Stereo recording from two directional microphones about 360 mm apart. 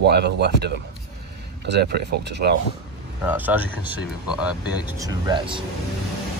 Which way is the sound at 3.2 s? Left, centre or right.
Centre.